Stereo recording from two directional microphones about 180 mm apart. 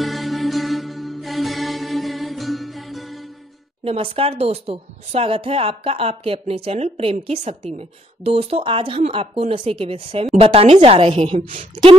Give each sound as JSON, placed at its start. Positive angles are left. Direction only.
{"t": 0.0, "sound": "music", "side_deg": 0}
{"t": 3.8, "sound": "speech", "side_deg": -30}